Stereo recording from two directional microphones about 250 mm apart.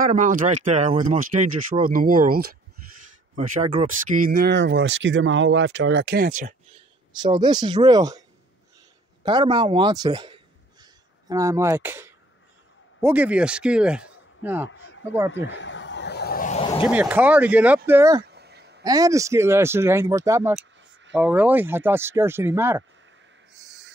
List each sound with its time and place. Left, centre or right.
0.0 s speech: right
3.3 s speech: right
4.3 s speech: right
7.2 s speech: centre
9.2 s a man's voice: centre
14.7 s a sound: left
16.8 s speech: centre
18.2 s a sound: right
18.9 s speech: centre